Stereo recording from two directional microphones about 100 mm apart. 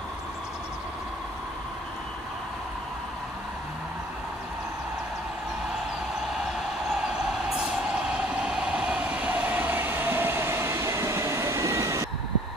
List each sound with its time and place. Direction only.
7.5 s train: 10° right (ahead or behind); by 12.1 s 30° right (ahead or behind)